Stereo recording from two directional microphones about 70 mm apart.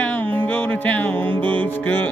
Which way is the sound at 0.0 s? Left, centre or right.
Left.